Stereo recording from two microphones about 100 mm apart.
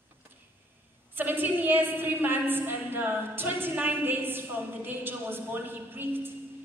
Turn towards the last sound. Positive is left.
turn(degrees=-20)  # may be behind; listen again after turning